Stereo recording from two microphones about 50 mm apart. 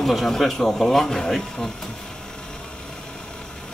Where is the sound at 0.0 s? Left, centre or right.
Centre.